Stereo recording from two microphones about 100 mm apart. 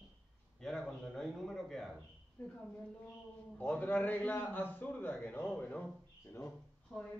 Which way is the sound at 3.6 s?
15° left (ahead or behind).